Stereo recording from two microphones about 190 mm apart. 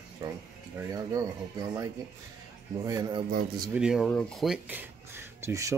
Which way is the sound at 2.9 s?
20° right (ahead or behind).